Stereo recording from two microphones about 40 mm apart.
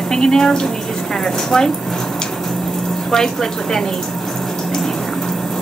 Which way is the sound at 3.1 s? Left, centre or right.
Centre.